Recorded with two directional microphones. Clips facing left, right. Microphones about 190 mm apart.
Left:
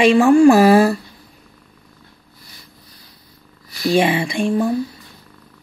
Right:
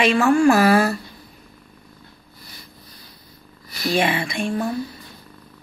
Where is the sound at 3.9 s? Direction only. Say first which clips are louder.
Left 5 dB; 30° left (ahead or behind).